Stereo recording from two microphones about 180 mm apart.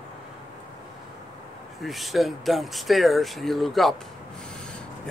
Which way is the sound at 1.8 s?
Centre (ahead or behind).